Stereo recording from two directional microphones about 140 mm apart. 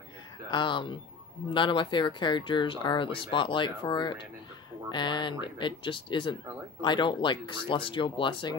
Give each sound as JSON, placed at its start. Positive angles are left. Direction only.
{"t": 0.5, "sound": "speech", "side_deg": 35}